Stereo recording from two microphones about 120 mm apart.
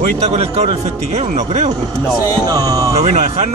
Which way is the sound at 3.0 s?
60° right (ahead or behind).